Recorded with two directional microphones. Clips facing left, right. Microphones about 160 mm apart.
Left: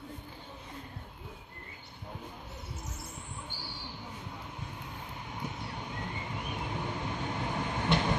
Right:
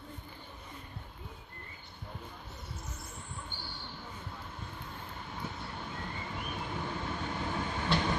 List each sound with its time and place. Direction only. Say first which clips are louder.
5.4 s vehicle: left 2 dB; 15° left (ahead or behind)